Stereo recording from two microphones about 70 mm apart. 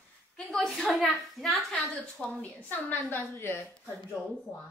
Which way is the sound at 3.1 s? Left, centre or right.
Left.